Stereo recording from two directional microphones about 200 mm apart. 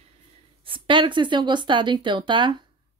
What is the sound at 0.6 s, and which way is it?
A woman's voice, 25° right (ahead or behind).